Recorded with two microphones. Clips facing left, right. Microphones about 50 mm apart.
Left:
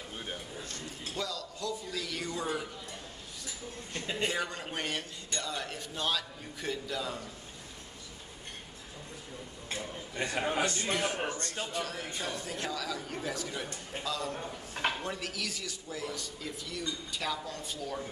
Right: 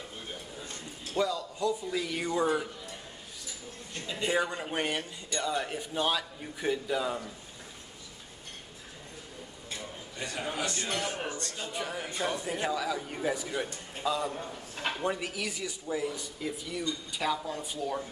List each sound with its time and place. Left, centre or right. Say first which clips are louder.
0.7 s a man's voice: left 1 dB; centre
4.0 s a man's voice: left 1 dB; left
4.3 s a man's voice: right 5 dB; centre
9.7 s a sound: left 3 dB; left
10.9 s a man's voice: left 2 dB; centre
11.7 s a man's voice: right 1 dB; centre